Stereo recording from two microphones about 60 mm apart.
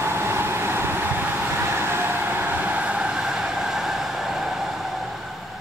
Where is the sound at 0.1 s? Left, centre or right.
Right.